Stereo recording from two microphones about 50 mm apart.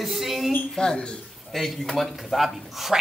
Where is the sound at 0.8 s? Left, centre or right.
Centre.